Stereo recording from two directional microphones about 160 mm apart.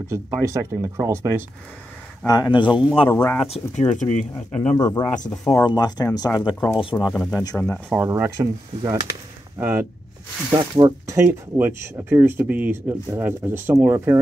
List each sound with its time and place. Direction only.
0.1 s speech: 15° right (ahead or behind)
2.2 s speech: 25° left (ahead or behind)
3.1 s speech: 10° left (ahead or behind)
3.4 s speech: 40° left (ahead or behind)
4.3 s speech: 10° left (ahead or behind)
4.7 s speech: 25° left (ahead or behind)
6.8 s speech: 35° left (ahead or behind)
7.2 s speech: 5° left (ahead or behind)
7.9 s speech: 15° right (ahead or behind)
10.5 s speech: 25° right (ahead or behind)